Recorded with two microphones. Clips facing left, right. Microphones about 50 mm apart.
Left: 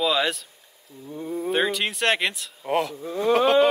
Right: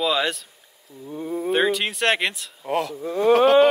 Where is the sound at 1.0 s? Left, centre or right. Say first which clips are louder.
Right 2 dB; centre.